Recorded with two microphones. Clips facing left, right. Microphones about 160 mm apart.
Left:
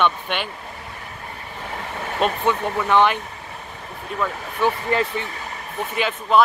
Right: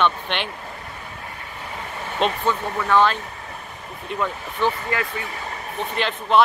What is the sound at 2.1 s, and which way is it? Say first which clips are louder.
Speech: left 1 dB; 10° left (ahead or behind).